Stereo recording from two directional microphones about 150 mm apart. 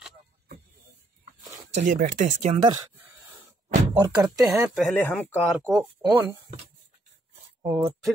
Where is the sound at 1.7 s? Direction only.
55° right (ahead or behind).